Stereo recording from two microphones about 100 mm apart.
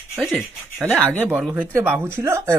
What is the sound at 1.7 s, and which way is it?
Speech, 25° right (ahead or behind).